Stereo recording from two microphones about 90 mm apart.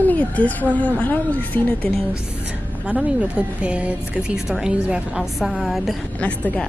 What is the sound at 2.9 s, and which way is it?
Speech, 10° right (ahead or behind).